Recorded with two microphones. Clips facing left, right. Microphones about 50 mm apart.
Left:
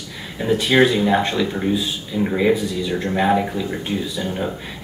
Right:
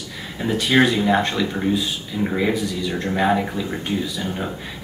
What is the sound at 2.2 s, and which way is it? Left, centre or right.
Speech, centre.